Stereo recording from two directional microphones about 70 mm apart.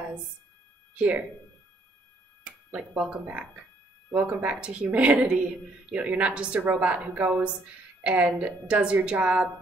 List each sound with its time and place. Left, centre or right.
0.9 s a woman's voice: centre
2.4 s a woman's voice: centre